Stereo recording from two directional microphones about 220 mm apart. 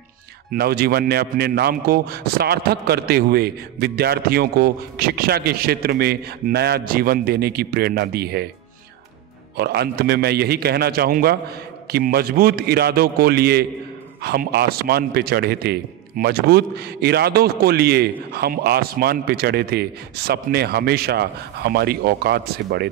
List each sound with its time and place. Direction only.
0.5 s a man's voice: 45° right (ahead or behind)
9.6 s a man's voice: 45° right (ahead or behind)